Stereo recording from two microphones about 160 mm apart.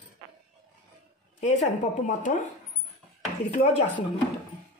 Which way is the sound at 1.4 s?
45° left (ahead or behind).